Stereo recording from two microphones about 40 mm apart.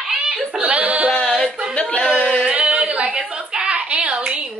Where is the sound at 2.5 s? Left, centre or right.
Right.